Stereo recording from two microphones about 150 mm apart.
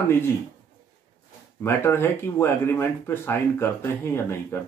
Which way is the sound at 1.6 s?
15° left (ahead or behind).